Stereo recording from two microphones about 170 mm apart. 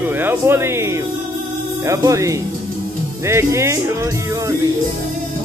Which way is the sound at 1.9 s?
20° right (ahead or behind).